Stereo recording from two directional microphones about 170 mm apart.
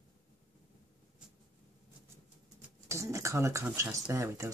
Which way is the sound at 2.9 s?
15° right (ahead or behind).